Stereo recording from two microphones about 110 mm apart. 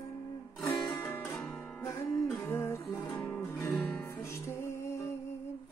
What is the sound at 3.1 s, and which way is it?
Music, 10° left (ahead or behind).